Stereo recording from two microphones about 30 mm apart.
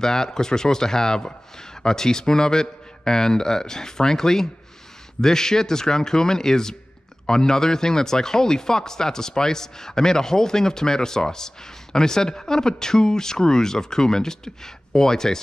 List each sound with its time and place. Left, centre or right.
0.0 s speech: centre